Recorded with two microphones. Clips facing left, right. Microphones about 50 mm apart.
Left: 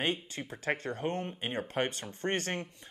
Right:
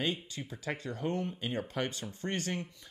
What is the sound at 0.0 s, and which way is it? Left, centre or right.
Speech, left.